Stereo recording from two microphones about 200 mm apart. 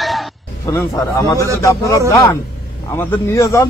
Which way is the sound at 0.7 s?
15° left (ahead or behind).